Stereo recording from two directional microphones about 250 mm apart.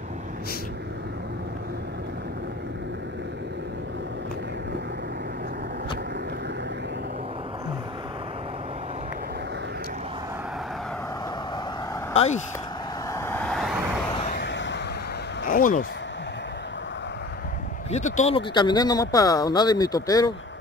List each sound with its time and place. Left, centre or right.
12.1 s speech: left
13.1 s vehicle: centre
14.3 s a sound: left
15.4 s speech: left
17.9 s speech: left